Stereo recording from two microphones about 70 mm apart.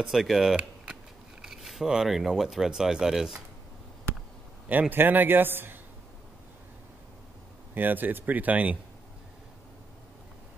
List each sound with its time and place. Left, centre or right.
0.0 s speech: centre
4.6 s a man's voice: right
7.7 s a man's voice: right